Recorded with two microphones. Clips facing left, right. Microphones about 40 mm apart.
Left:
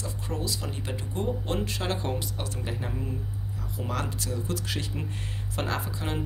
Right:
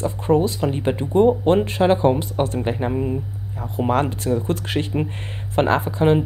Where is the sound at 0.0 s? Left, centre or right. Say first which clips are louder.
Right 15 dB; right.